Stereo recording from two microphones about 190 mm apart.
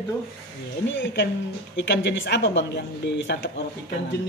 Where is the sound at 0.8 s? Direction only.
70° left (ahead or behind).